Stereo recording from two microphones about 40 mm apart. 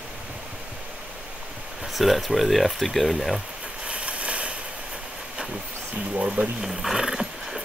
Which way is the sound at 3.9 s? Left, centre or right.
Right.